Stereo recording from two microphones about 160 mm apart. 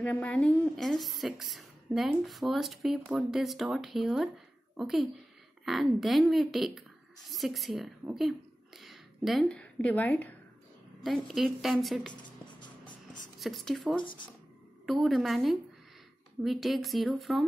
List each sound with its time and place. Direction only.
0.0 s a woman's voice: 5° left (ahead or behind)
11.1 s a woman's voice: centre (ahead or behind)
12.1 s music: 30° left (ahead or behind)
13.4 s a woman's voice: centre (ahead or behind)